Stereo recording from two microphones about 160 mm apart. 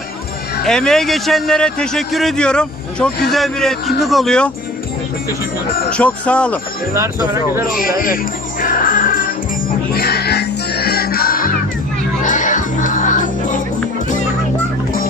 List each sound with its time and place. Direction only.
0.7 s a man's voice: centre (ahead or behind)
5.9 s a man's voice: 5° left (ahead or behind)
6.9 s speech: 15° right (ahead or behind)
8.0 s speech: 60° left (ahead or behind)
9.9 s music: 75° left (ahead or behind)
12.2 s music: 50° left (ahead or behind)